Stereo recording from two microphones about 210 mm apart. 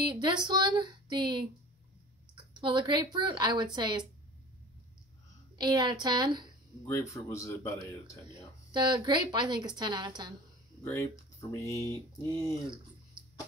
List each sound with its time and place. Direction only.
0.1 s a woman's voice: 20° right (ahead or behind)
5.6 s a woman's voice: 20° right (ahead or behind)
6.9 s speech: 15° left (ahead or behind)
8.7 s a woman's voice: 20° right (ahead or behind)
11.5 s speech: 10° left (ahead or behind)